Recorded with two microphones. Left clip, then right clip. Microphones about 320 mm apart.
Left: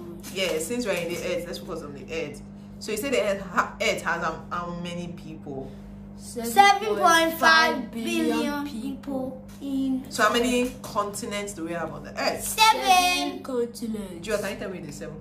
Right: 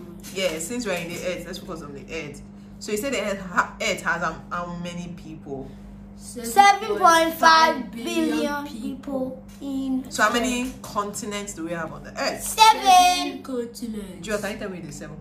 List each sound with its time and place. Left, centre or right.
0.4 s a woman's voice: centre
6.5 s child singing: centre
8.0 s a child's voice: centre
9.7 s a child's voice: centre
10.1 s a woman's voice: centre
12.5 s child singing: centre
13.5 s a woman's voice: centre
14.2 s child singing: centre